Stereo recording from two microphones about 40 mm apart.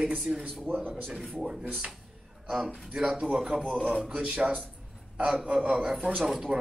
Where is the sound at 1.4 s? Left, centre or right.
Centre.